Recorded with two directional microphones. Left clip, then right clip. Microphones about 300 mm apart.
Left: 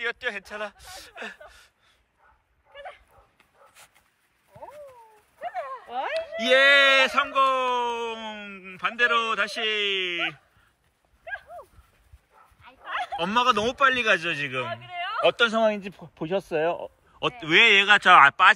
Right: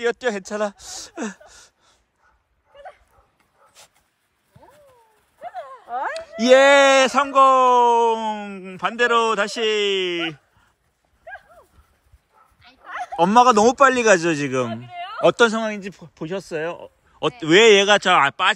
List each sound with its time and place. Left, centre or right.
0.0 s speech: centre
1.5 s a sound: centre
2.8 s dog: centre
5.4 s a sound: left
6.1 s speech: centre
12.9 s speech: centre